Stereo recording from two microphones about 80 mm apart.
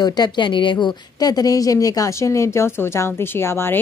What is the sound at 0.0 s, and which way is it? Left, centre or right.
A woman's voice, left.